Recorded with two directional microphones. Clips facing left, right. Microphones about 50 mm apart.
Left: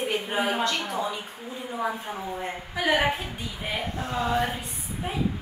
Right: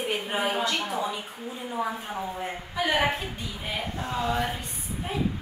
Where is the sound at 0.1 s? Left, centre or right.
Centre.